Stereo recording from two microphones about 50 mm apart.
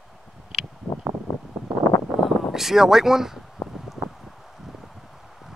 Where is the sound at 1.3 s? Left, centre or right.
Left.